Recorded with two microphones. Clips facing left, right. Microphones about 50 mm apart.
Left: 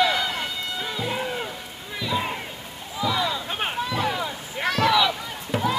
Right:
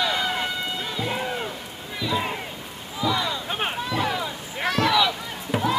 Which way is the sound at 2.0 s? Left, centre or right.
Centre.